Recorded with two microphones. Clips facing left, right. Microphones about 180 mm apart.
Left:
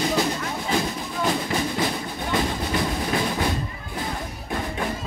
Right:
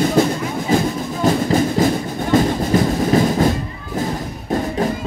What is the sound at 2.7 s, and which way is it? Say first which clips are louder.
Train: right 9 dB; 45° right (ahead or behind).